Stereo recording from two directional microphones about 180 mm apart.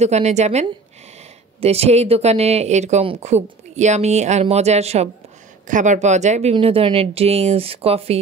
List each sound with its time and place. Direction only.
0.0 s speech: 40° right (ahead or behind)